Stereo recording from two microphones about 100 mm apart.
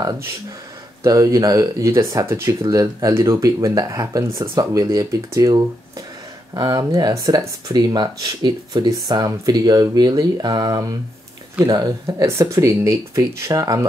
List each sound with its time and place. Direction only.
1.0 s speech: 35° right (ahead or behind)
12.1 s speech: 30° right (ahead or behind)